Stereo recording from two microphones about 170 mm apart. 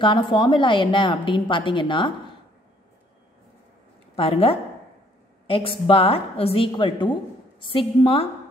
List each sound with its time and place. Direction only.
0.0 s a woman's voice: 30° left (ahead or behind)
4.1 s a woman's voice: 35° left (ahead or behind)